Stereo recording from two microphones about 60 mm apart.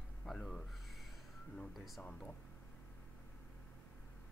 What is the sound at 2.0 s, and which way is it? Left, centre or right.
Speech, centre.